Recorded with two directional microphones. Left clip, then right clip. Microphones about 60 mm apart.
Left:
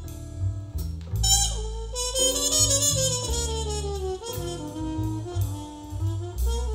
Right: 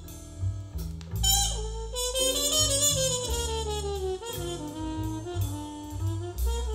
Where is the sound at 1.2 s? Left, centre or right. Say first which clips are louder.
Left 2 dB; left.